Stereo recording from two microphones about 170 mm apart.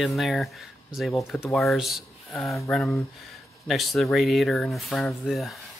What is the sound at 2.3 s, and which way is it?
Speech, 15° left (ahead or behind).